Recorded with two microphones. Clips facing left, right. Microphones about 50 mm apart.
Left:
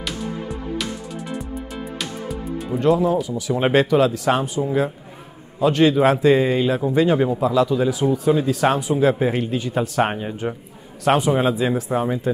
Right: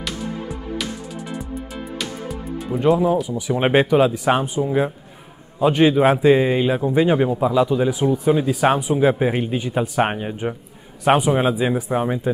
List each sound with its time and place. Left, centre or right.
0.0 s music: centre
2.8 s speech: centre